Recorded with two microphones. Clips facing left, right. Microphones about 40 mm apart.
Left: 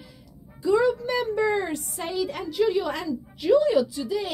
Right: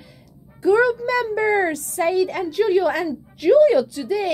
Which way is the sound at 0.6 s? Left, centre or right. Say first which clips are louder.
Right 5 dB; right.